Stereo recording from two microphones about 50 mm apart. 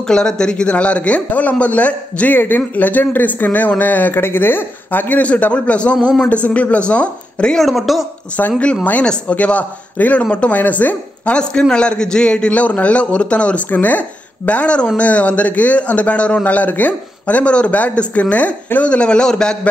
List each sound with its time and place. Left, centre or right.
0.0 s a man's voice: centre
2.3 s a man's voice: left
7.5 s speech: centre
8.4 s speech: left
9.0 s a man's voice: left
10.6 s a woman's voice: left
11.7 s a man's voice: centre